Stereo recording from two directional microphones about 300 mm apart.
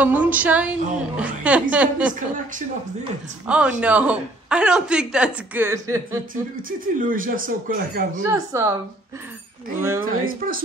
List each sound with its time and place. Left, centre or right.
0.0 s a woman's voice: centre
3.4 s a woman's voice: centre
6.8 s speech: right
8.3 s speech: centre
10.0 s speech: right